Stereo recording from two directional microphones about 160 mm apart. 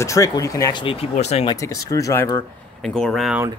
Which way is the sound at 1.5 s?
20° left (ahead or behind).